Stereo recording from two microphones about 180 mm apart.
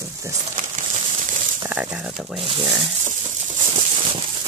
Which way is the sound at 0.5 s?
45° right (ahead or behind).